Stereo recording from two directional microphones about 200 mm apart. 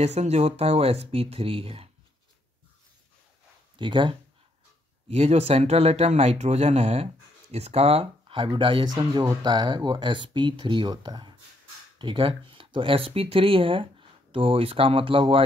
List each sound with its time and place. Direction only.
0.0 s speech: 35° right (ahead or behind)
3.7 s speech: 25° right (ahead or behind)